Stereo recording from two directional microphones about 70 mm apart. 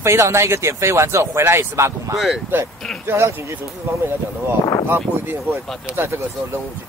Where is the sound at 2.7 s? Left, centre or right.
Centre.